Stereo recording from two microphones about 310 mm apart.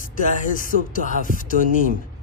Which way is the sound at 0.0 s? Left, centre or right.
Left.